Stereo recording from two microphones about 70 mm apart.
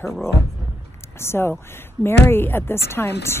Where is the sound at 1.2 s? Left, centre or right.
Left.